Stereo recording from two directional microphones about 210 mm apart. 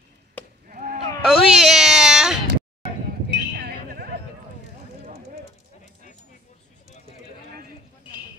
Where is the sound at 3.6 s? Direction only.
50° right (ahead or behind).